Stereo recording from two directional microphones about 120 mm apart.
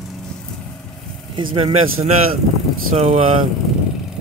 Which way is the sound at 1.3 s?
50° right (ahead or behind).